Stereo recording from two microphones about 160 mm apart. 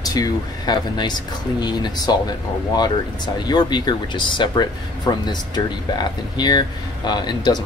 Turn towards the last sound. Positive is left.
turn(degrees=25)  # may be behind; listen again after turning